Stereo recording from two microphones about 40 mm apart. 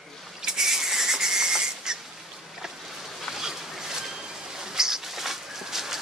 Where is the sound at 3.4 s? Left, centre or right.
Centre.